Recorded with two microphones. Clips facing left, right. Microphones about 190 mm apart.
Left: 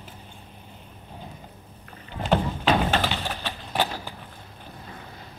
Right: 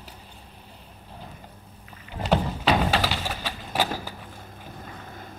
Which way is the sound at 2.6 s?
5° right (ahead or behind).